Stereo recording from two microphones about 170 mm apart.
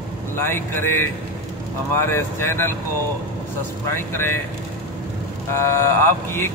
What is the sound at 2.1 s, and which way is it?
Speech, 15° left (ahead or behind).